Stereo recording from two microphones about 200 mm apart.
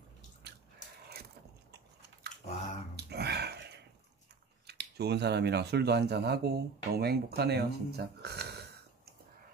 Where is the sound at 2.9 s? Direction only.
55° right (ahead or behind).